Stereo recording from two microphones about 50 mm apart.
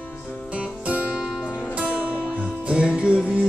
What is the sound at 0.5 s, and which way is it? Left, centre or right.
Music, right.